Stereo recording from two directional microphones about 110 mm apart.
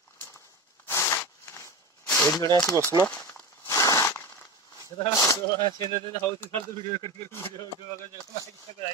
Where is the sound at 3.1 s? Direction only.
25° left (ahead or behind).